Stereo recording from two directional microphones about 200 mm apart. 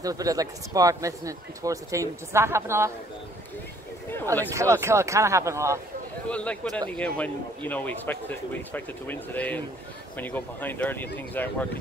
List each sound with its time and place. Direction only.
0.0 s speech: 15° right (ahead or behind)
4.6 s speech: 15° right (ahead or behind)
6.2 s speech: 5° left (ahead or behind)